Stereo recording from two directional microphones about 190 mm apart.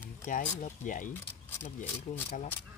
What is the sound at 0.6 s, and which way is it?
Speech, 40° left (ahead or behind).